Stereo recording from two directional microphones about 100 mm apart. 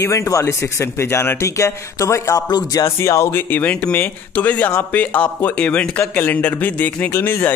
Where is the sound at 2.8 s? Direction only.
30° left (ahead or behind).